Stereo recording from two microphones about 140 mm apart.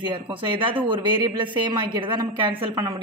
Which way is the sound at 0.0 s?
35° right (ahead or behind).